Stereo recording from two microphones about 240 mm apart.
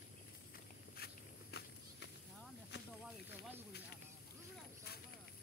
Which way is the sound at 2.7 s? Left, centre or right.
Left.